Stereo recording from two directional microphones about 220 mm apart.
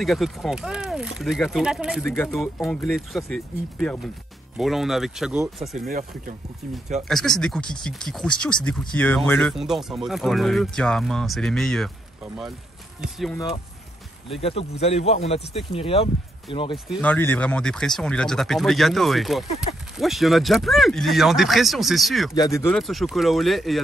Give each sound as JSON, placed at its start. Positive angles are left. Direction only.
{"t": 0.0, "sound": "speech", "side_deg": 0}
{"t": 5.9, "sound": "speech", "side_deg": -40}
{"t": 7.1, "sound": "speech", "side_deg": 0}
{"t": 14.4, "sound": "speech", "side_deg": 25}
{"t": 16.7, "sound": "speech", "side_deg": 5}
{"t": 22.3, "sound": "speech", "side_deg": 15}
{"t": 22.8, "sound": "speech", "side_deg": 0}